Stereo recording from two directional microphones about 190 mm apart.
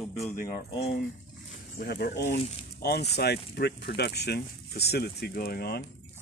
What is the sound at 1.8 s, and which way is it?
Speech, 60° left (ahead or behind).